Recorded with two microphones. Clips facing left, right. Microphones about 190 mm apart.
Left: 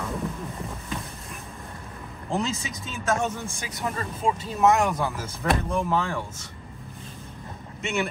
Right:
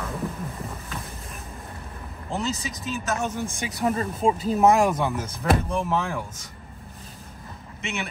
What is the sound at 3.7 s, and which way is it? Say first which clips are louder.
Speech: right 6 dB; 30° right (ahead or behind).